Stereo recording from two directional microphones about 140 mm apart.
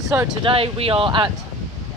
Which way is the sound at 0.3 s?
35° right (ahead or behind).